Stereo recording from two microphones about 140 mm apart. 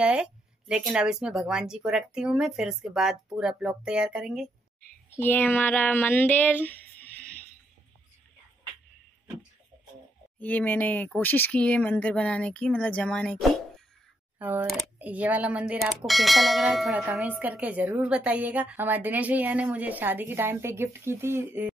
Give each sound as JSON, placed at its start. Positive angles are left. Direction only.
{"t": 0.0, "sound": "speech", "side_deg": -5}
{"t": 5.1, "sound": "speech", "side_deg": 15}
{"t": 10.4, "sound": "speech", "side_deg": 10}
{"t": 14.4, "sound": "speech", "side_deg": -15}